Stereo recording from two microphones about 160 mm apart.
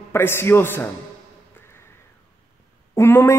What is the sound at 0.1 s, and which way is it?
Speech, 15° left (ahead or behind).